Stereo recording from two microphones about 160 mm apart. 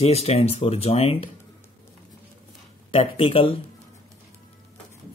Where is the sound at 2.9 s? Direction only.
35° left (ahead or behind).